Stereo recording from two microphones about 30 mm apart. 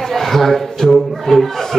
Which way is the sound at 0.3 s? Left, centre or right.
Centre.